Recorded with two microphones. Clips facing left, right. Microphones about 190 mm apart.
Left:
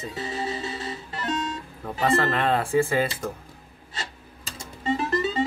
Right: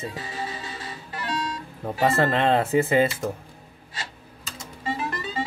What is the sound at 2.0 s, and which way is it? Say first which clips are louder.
Speech: right 2 dB; 25° right (ahead or behind).